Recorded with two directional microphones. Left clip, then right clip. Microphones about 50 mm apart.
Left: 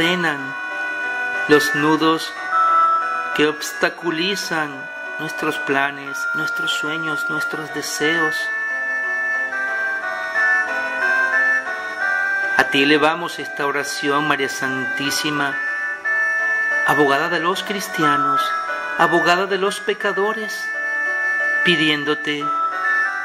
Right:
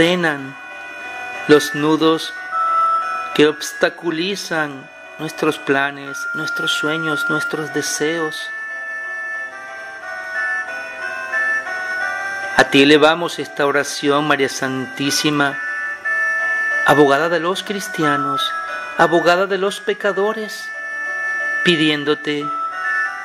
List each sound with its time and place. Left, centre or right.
0.0 s speech: right
1.5 s speech: centre
2.5 s music: left
3.3 s speech: right
10.3 s ice cream truck: left
12.7 s speech: right
16.1 s emergency vehicle: left
16.8 s speech: centre
21.0 s music: left
21.6 s speech: right
22.5 s organ: left